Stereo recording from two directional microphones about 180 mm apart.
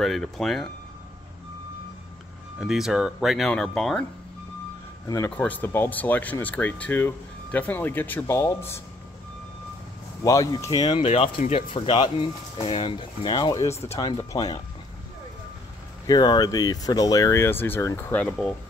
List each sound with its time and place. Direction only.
0.0 s speech: centre (ahead or behind)
2.6 s speech: centre (ahead or behind)
5.0 s speech: 15° left (ahead or behind)
10.2 s speech: 20° left (ahead or behind)
10.8 s speech: 30° left (ahead or behind)
16.1 s speech: 20° left (ahead or behind)